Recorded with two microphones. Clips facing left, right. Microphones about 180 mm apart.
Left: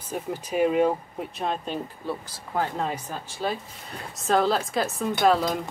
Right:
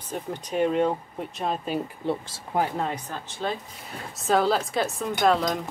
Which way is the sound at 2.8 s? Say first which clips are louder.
Even; 5° left (ahead or behind).